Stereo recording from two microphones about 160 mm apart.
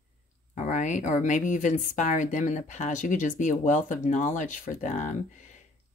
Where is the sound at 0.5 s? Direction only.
50° left (ahead or behind).